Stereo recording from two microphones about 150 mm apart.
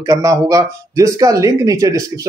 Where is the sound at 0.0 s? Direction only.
20° right (ahead or behind).